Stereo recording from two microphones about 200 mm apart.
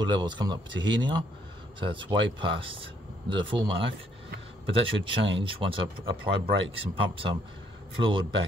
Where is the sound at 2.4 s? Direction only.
25° right (ahead or behind).